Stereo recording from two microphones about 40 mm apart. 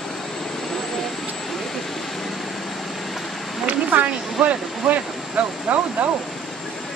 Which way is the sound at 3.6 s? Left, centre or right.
Right.